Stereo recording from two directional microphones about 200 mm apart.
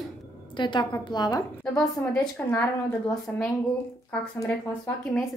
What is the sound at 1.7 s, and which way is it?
A child's voice, 5° left (ahead or behind).